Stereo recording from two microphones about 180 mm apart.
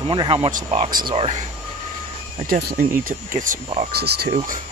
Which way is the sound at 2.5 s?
60° right (ahead or behind).